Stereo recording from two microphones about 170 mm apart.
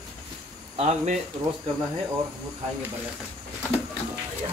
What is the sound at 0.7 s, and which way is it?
Speech, 40° right (ahead or behind).